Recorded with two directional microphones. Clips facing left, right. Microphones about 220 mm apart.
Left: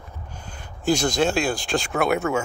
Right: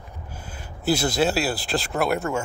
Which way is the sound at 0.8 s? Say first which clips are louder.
Left 1 dB; 5° right (ahead or behind).